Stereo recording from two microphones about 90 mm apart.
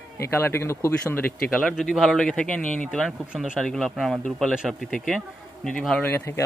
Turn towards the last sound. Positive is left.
turn(degrees=30)  # may be behind; listen again after turning